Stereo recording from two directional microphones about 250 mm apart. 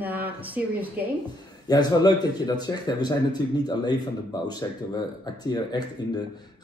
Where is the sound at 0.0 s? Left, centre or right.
Centre.